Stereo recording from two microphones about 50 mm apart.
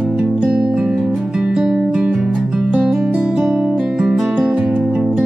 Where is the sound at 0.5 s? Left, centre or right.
Right.